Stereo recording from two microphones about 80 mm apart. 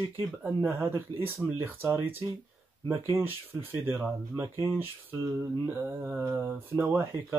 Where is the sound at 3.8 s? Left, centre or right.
Right.